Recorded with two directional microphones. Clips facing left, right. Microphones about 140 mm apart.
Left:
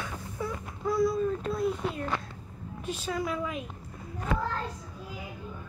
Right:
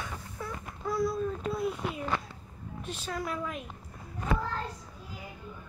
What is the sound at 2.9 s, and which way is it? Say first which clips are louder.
Speech: left 4 dB; centre (ahead or behind).